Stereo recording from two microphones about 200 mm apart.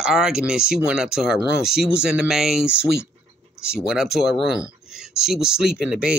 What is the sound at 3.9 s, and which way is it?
Speech, centre (ahead or behind).